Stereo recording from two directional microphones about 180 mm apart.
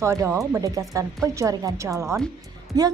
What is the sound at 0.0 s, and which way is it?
A woman's voice, 15° right (ahead or behind).